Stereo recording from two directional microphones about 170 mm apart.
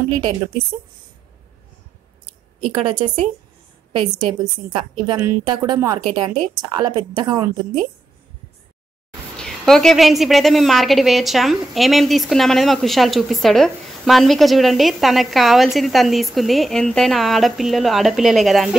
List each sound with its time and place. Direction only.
2.6 s a woman's voice: 30° right (ahead or behind)
9.4 s a woman's voice: 5° left (ahead or behind)